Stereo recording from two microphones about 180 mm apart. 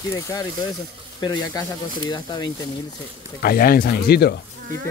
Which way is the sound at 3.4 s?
55° left (ahead or behind).